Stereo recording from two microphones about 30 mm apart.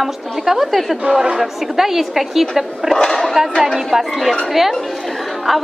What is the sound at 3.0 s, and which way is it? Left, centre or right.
Speech, centre.